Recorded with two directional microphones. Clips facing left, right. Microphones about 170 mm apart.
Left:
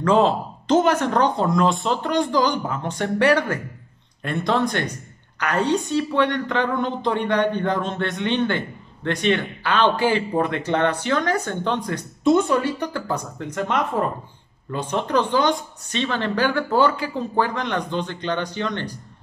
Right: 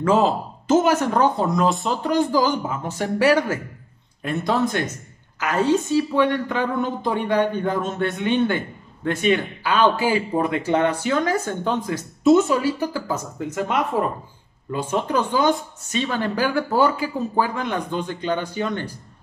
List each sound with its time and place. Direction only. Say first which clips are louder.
0.0 s a woman's voice: left 1 dB; 5° right (ahead or behind)